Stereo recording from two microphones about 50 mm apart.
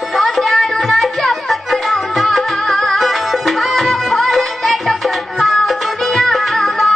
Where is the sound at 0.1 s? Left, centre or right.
Centre.